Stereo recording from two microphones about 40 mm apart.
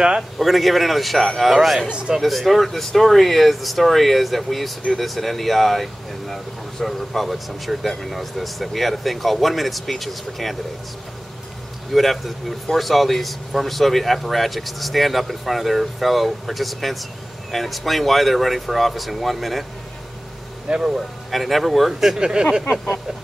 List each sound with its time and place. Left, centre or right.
0.4 s speech: centre
1.9 s speech: right
2.2 s speech: centre
11.9 s speech: centre
20.6 s speech: right
21.3 s speech: centre
22.2 s speech: right